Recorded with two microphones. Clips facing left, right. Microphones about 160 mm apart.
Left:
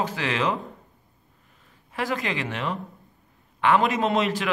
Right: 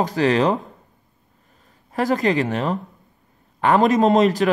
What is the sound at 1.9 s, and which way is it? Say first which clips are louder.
Speech: right 9 dB; 40° right (ahead or behind).